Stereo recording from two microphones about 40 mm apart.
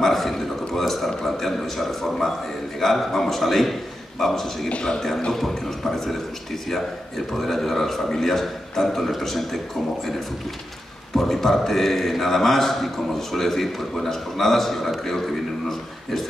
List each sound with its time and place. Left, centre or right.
0.0 s a sound: centre
2.8 s a man's voice: centre
4.6 s a man's voice: left
5.3 s a man's voice: centre
11.1 s a man's voice: centre